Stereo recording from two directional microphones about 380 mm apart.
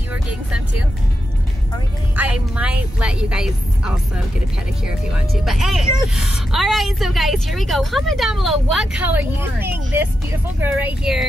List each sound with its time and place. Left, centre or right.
2.1 s a woman's voice: centre